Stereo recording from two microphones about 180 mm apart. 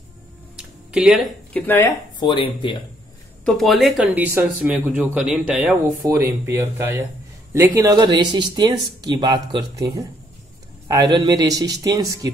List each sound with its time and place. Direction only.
0.6 s a sound: 5° right (ahead or behind)
1.7 s speech: 15° left (ahead or behind)
3.4 s speech: centre (ahead or behind); by 12.3 s 20° right (ahead or behind)